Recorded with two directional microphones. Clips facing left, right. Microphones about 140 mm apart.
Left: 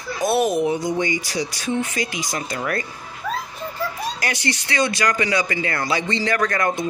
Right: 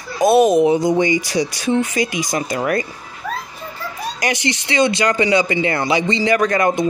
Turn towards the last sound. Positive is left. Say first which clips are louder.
# right 5 dB
turn(degrees=-20)  # may be behind; listen again after turning